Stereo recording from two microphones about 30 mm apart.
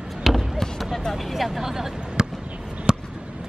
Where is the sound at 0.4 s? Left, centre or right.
Centre.